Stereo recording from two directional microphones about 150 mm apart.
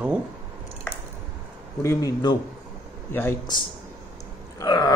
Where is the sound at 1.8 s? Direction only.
20° left (ahead or behind).